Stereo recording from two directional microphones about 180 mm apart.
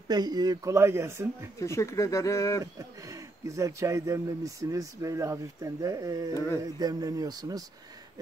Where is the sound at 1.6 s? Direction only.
15° left (ahead or behind).